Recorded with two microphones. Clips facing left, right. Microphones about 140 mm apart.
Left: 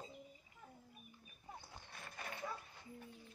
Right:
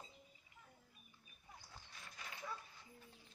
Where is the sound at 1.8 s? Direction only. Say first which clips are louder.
Left 6 dB; 60° left (ahead or behind).